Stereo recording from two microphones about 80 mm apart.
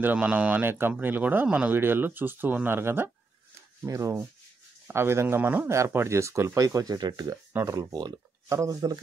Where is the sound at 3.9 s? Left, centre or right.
Right.